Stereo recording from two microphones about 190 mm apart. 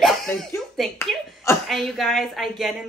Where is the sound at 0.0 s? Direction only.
Centre (ahead or behind).